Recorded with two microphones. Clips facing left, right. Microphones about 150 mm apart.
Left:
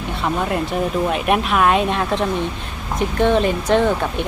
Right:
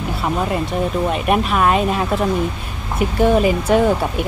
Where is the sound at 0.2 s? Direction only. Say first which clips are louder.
Even; centre (ahead or behind).